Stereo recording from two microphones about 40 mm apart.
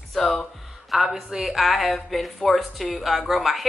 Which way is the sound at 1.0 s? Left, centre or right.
Centre.